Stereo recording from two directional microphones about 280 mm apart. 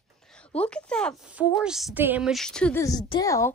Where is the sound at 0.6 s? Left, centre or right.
Centre.